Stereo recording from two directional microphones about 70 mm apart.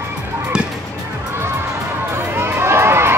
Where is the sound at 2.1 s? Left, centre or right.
Right.